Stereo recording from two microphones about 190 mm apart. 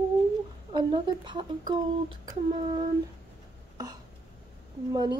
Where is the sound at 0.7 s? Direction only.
25° right (ahead or behind).